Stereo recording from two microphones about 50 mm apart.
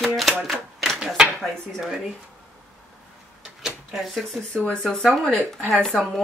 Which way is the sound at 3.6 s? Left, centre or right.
Centre.